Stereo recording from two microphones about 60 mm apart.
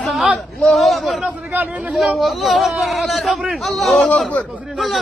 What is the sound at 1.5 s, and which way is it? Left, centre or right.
Speech, right.